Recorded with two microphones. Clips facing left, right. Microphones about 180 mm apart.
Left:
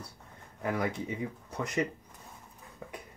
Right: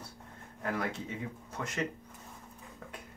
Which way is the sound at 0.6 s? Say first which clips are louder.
Left 3 dB; 15° left (ahead or behind).